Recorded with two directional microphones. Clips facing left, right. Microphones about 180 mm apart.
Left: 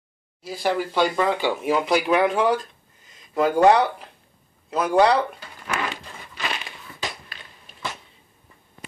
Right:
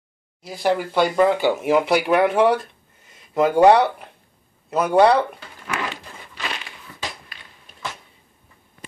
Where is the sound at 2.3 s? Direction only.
65° right (ahead or behind).